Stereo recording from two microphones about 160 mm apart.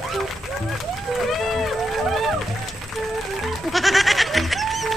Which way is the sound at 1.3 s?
Centre (ahead or behind).